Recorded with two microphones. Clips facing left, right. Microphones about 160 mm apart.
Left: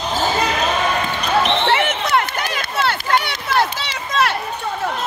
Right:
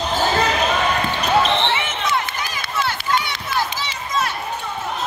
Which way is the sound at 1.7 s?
65° left (ahead or behind).